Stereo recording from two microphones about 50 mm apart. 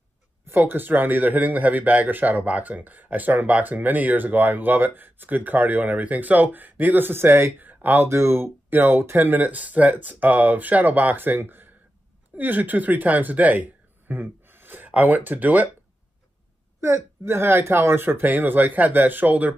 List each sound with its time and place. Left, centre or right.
0.5 s speech: right
8.1 s speech: right
8.6 s speech: right
16.8 s speech: right